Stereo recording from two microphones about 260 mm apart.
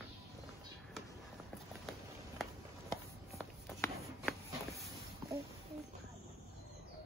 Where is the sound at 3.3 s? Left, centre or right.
Centre.